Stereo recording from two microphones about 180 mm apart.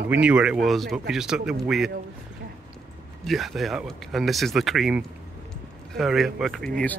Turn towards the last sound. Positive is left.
turn(degrees=5)  # may be behind; listen again after turning